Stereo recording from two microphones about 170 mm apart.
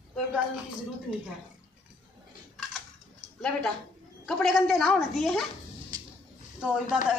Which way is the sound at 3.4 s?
5° left (ahead or behind).